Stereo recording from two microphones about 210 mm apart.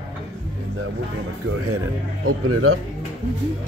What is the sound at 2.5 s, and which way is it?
Speech, 90° right.